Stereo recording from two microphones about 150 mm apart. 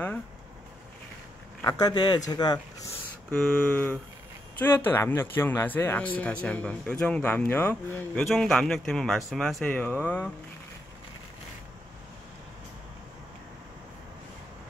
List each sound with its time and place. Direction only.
1.6 s speech: 25° left (ahead or behind)
3.3 s speech: 5° left (ahead or behind)